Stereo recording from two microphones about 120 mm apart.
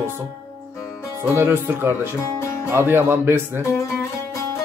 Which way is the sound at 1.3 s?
20° right (ahead or behind).